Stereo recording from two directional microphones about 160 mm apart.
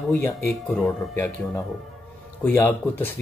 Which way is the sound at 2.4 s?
15° left (ahead or behind).